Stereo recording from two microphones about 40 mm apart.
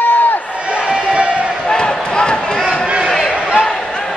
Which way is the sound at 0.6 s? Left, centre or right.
Right.